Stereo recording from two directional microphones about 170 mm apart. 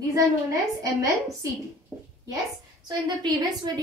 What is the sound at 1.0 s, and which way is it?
Speech, 20° right (ahead or behind).